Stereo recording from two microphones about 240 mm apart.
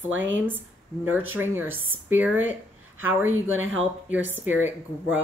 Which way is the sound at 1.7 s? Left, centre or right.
Right.